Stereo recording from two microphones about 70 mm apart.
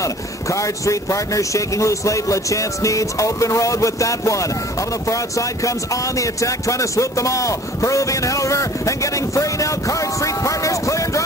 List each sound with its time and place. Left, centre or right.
0.0 s speech: left